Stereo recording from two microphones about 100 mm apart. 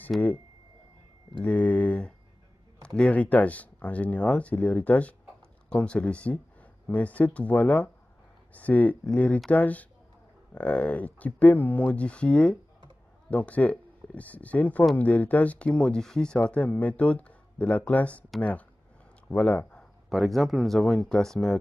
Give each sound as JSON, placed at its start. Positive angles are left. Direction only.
{"t": 0.1, "sound": "speech", "side_deg": 0}
{"t": 1.4, "sound": "speech", "side_deg": 15}
{"t": 19.2, "sound": "speech", "side_deg": 10}